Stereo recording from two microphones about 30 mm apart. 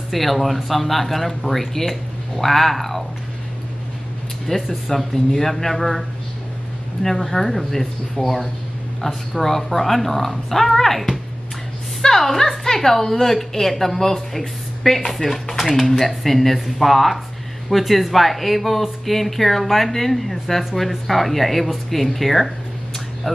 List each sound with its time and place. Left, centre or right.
0.1 s speech: centre
4.5 s speech: left
4.8 s a woman's voice: centre